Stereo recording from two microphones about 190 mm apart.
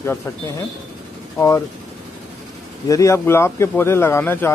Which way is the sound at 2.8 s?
15° left (ahead or behind).